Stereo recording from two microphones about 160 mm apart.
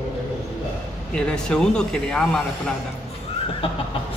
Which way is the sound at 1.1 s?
5° left (ahead or behind).